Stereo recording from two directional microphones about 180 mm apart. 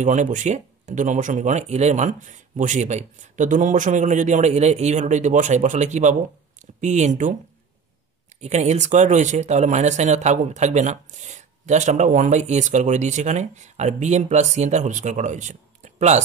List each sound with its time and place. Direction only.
0.0 s speech: 40° right (ahead or behind)
8.4 s speech: 35° right (ahead or behind)